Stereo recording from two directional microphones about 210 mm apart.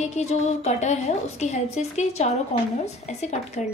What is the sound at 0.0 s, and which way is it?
A woman's voice, 30° left (ahead or behind).